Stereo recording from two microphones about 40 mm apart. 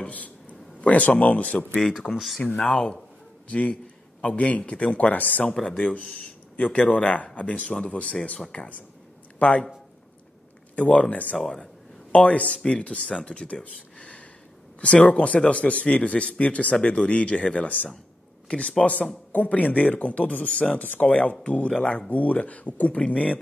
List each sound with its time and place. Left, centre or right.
0.1 s a man's voice: left
1.7 s speech: centre
2.6 s speech: centre
4.2 s speech: left
10.8 s speech: left
11.3 s speech: centre
11.6 s a sound: left
12.8 s speech: left
13.9 s a sound: left
14.8 s speech: left
21.7 s speech: centre
22.1 s speech: left